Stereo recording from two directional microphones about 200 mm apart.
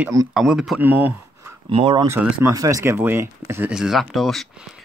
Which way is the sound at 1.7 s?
25° right (ahead or behind).